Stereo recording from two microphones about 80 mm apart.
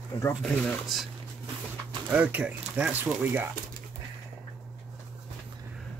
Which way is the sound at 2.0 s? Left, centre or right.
Centre.